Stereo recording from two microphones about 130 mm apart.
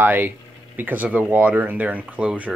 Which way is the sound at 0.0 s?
15° right (ahead or behind).